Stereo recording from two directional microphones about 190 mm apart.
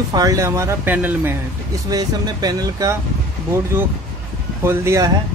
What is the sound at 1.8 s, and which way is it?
Speech, 20° right (ahead or behind).